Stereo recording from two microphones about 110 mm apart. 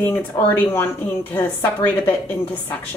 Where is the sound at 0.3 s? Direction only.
35° left (ahead or behind).